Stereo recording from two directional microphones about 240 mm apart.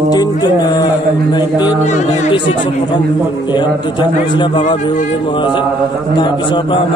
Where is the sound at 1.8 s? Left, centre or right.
Left.